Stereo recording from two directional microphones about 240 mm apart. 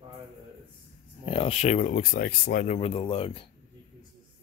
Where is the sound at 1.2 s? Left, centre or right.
Left.